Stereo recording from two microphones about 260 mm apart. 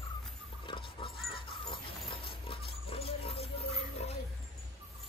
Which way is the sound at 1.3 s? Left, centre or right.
Centre.